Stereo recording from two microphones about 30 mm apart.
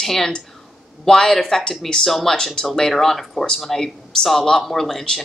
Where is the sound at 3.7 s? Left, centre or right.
Left.